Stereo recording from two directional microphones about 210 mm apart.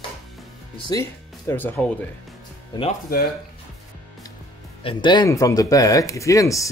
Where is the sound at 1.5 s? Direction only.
10° left (ahead or behind).